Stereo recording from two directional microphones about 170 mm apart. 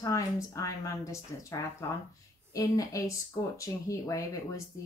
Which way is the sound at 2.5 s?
20° left (ahead or behind).